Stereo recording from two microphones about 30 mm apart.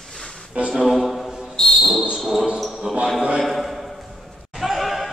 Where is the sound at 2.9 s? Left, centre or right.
Right.